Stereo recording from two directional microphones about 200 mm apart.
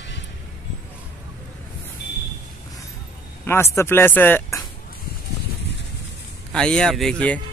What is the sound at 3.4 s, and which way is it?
Speech, 10° left (ahead or behind).